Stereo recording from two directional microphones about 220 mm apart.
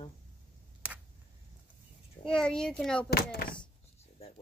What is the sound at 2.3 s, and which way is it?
Speech, 5° left (ahead or behind).